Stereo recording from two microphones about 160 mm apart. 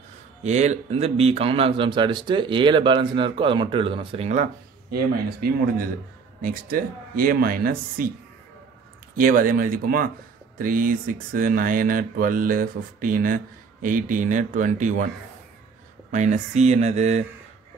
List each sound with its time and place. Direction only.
0.4 s speech: 45° right (ahead or behind)
6.4 s speech: 65° right (ahead or behind)
9.1 s speech: 60° right (ahead or behind)
16.1 s speech: 50° right (ahead or behind)